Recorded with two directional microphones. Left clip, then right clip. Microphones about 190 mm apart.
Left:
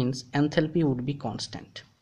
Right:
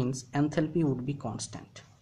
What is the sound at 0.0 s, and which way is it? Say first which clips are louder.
Speech: left 3 dB; 25° left (ahead or behind).